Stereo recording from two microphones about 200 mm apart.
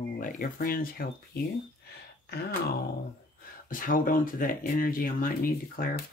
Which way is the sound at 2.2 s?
50° left (ahead or behind).